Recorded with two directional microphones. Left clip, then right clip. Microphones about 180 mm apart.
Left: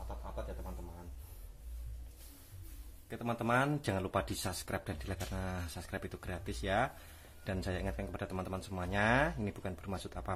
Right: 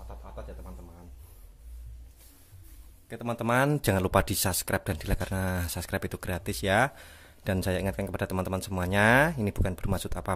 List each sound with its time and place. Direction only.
3.1 s speech: 50° right (ahead or behind)